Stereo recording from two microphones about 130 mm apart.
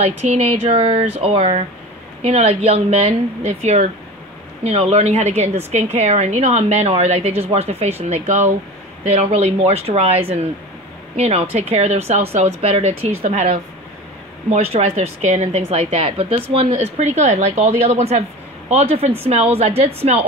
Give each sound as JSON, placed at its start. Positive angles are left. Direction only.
{"t": 0.0, "sound": "a woman's voice", "side_deg": -55}